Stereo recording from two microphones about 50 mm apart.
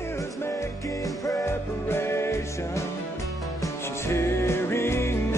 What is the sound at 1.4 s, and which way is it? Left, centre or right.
Music, left.